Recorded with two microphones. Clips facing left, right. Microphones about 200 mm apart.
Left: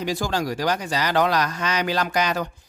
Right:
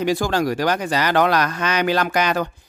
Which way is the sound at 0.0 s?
60° right (ahead or behind).